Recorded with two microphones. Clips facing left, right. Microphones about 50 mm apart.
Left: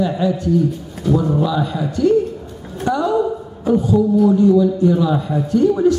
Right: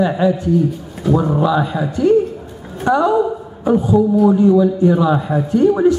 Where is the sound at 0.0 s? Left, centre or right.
Centre.